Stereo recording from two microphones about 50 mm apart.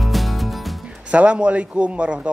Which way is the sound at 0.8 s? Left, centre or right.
Right.